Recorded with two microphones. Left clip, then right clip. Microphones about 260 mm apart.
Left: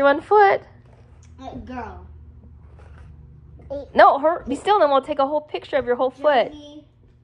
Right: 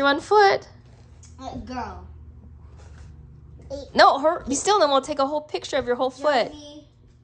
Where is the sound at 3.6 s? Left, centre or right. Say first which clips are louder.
Left 3 dB; centre.